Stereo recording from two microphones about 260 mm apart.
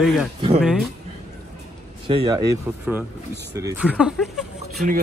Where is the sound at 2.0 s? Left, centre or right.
Centre.